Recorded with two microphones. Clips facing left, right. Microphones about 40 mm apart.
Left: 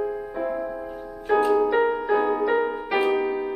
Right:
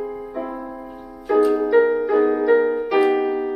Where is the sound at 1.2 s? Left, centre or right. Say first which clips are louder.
Right 4 dB; left.